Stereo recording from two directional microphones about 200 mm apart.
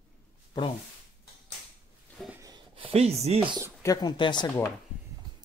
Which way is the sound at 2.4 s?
25° right (ahead or behind).